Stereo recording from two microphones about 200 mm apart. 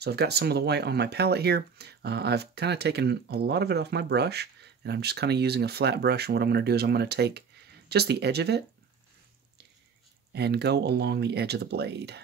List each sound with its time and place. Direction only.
0.0 s speech: 55° right (ahead or behind)
10.3 s speech: 55° right (ahead or behind)